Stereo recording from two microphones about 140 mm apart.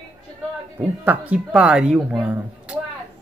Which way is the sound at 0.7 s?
10° right (ahead or behind).